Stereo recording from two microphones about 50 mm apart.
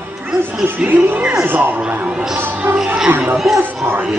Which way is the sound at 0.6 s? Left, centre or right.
Right.